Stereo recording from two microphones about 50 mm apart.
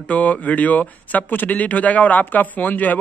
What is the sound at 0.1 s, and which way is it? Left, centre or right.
Speech, left.